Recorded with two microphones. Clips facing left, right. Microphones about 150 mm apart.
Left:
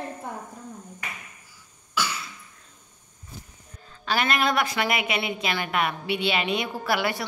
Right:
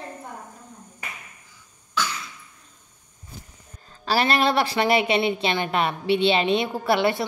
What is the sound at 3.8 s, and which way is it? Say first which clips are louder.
A woman's voice: right 3 dB; 35° right (ahead or behind).